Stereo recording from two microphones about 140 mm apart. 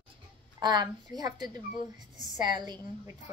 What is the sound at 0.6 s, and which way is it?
A woman's voice, 30° right (ahead or behind).